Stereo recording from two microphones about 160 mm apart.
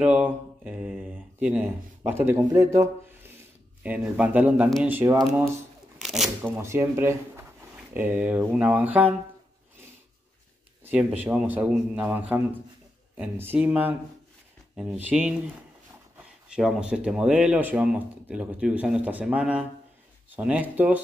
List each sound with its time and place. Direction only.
0.0 s speech: 5° right (ahead or behind)
5.9 s shuffling cards: centre (ahead or behind)
6.4 s speech: 15° right (ahead or behind)
10.8 s speech: 10° right (ahead or behind)